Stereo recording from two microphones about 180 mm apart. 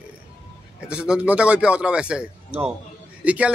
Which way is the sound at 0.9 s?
5° right (ahead or behind).